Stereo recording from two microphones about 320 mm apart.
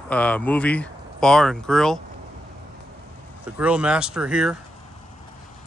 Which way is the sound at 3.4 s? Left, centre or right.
Centre.